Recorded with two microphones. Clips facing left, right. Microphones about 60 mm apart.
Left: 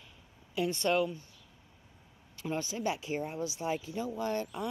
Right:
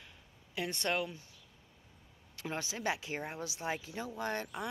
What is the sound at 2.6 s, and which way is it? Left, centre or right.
Speech, right.